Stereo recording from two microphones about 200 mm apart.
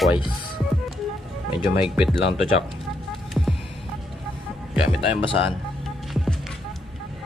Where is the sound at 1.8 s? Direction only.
5° right (ahead or behind).